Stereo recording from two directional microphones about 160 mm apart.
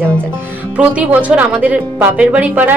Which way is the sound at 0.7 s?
10° right (ahead or behind).